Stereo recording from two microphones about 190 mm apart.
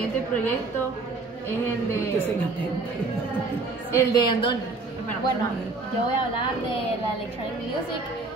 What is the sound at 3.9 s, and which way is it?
Speech, 20° left (ahead or behind).